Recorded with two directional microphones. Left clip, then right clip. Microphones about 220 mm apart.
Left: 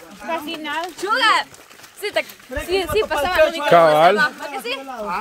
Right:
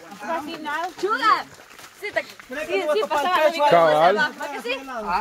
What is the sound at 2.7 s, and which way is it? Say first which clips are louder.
Speech: left 2 dB; 55° left (ahead or behind).